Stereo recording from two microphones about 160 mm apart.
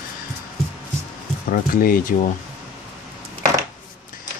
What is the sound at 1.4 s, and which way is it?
Speech, 60° left (ahead or behind).